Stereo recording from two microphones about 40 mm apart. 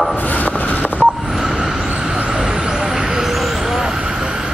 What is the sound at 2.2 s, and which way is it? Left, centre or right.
Vehicle, centre.